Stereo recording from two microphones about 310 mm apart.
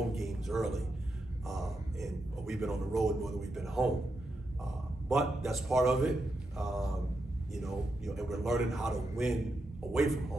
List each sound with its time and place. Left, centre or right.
0.1 s a man's voice: centre